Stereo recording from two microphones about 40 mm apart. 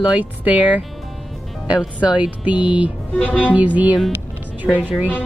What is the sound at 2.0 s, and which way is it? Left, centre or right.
Music, right.